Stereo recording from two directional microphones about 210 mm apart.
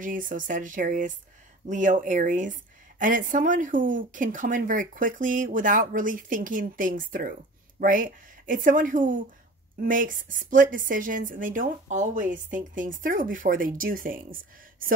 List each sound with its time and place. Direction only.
0.0 s a woman's voice: 40° right (ahead or behind)